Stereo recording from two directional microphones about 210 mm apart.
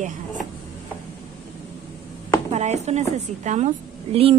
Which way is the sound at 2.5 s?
30° right (ahead or behind).